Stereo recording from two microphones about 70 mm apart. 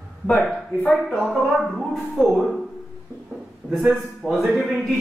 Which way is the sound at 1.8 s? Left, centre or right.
Centre.